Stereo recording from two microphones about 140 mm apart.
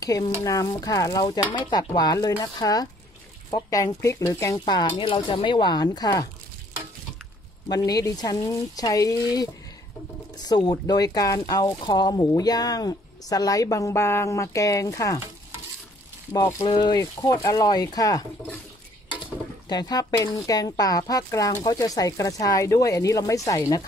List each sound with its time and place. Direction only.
0.0 s speech: 25° left (ahead or behind)
7.7 s speech: 25° left (ahead or behind)
16.3 s speech: 20° left (ahead or behind)
16.6 s speech: 35° left (ahead or behind)
19.7 s speech: 30° left (ahead or behind)